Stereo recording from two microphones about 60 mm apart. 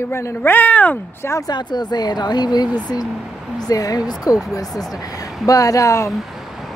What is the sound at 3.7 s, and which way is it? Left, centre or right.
Speech, left.